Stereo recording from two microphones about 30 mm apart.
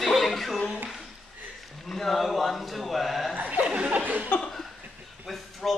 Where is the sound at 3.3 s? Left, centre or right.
Right.